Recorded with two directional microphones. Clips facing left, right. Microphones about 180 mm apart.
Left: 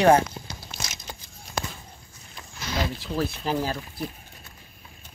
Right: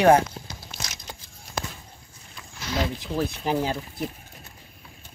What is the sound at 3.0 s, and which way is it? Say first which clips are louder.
Speech: right 1 dB; 15° right (ahead or behind).